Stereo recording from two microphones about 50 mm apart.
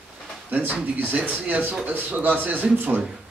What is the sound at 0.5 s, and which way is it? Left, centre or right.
Speech, right.